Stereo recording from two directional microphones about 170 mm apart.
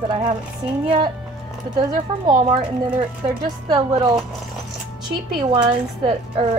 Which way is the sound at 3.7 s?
30° right (ahead or behind).